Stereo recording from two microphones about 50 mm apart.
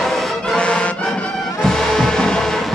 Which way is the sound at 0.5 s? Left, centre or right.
Left.